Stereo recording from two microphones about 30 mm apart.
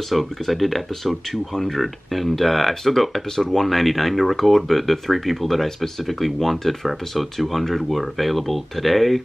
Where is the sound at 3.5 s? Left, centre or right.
Centre.